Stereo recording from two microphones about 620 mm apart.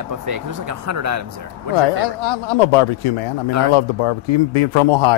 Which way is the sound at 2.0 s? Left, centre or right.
Left.